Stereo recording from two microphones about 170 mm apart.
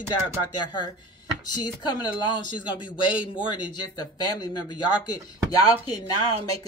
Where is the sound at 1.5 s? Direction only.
25° left (ahead or behind).